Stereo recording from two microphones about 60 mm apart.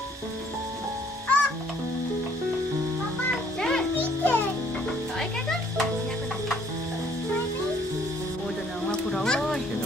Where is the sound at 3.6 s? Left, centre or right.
Centre.